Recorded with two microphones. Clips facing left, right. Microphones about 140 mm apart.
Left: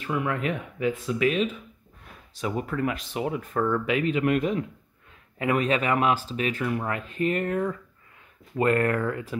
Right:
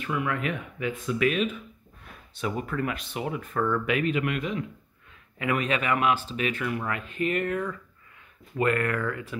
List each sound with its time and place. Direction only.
0.0 s speech: 30° left (ahead or behind)
4.3 s speech: 40° left (ahead or behind)